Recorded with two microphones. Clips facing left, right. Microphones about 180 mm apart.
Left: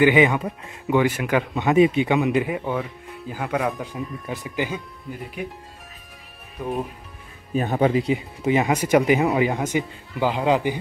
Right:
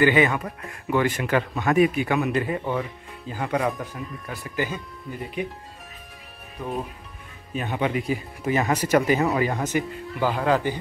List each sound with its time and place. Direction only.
0.0 s speech: 15° left (ahead or behind)
3.8 s speech: 20° left (ahead or behind)
6.6 s speech: 10° left (ahead or behind)
7.5 s speech: 40° left (ahead or behind)
8.1 s speech: 20° left (ahead or behind)